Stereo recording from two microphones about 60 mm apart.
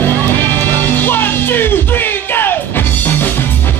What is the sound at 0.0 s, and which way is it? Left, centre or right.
Music, left.